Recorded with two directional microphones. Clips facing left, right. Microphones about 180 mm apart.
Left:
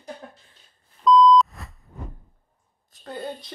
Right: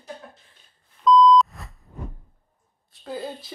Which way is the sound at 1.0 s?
Centre (ahead or behind).